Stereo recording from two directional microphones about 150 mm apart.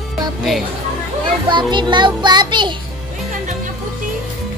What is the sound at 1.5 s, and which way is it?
Music, 30° right (ahead or behind).